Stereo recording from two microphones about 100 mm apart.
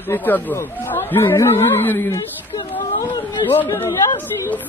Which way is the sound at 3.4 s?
20° left (ahead or behind).